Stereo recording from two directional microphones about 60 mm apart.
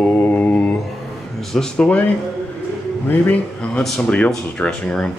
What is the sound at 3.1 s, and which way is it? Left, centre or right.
Speech, left.